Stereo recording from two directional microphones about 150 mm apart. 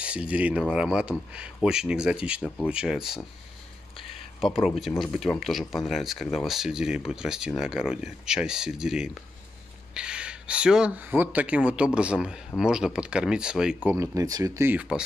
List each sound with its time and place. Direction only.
0.0 s speech: 10° right (ahead or behind)
4.4 s speech: centre (ahead or behind)
13.8 s speech: 20° right (ahead or behind)